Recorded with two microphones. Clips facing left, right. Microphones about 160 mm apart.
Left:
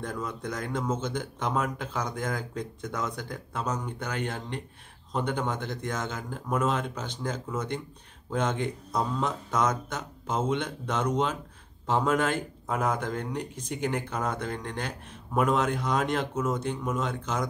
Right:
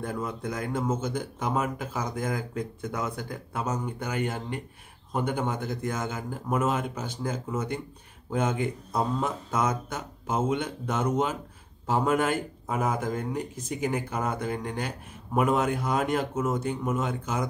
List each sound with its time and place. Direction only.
0.0 s speech: 10° right (ahead or behind)